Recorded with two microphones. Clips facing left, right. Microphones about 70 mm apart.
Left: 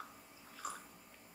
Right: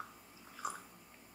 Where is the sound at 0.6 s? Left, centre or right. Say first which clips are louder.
Right 3 dB; centre.